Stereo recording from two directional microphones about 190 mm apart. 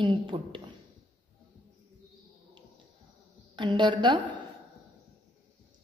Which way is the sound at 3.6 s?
25° right (ahead or behind).